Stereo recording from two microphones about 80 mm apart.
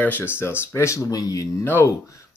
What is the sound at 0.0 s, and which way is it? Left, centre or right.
Speech, left.